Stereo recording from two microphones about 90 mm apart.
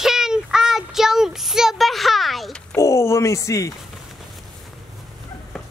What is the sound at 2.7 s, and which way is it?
A man's voice, 30° left (ahead or behind).